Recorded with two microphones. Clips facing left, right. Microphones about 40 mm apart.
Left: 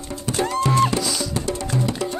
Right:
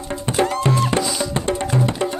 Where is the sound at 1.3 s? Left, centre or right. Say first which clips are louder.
Right 4 dB; right.